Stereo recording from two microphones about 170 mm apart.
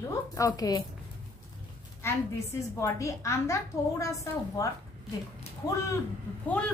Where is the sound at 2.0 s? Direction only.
15° left (ahead or behind).